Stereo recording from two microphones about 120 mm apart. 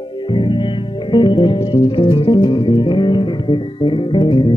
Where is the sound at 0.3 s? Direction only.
40° left (ahead or behind).